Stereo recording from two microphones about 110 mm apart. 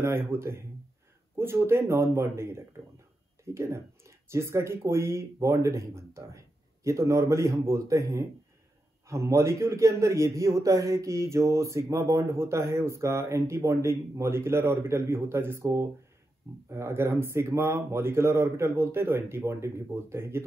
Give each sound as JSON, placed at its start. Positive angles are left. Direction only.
{"t": 0.0, "sound": "a man's voice", "side_deg": -20}